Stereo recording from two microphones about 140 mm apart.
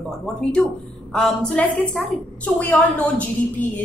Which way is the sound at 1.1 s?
5° left (ahead or behind).